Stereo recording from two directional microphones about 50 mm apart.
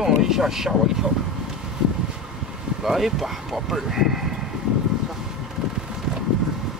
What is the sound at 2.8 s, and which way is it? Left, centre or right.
Speech, centre.